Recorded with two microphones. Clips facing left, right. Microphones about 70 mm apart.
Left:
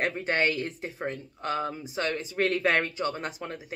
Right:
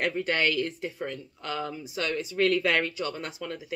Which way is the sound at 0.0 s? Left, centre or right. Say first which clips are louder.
Even; left.